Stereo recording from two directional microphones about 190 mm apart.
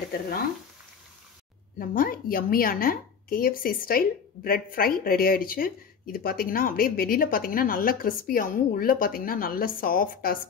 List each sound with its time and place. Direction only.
1.8 s a woman's voice: 50° left (ahead or behind)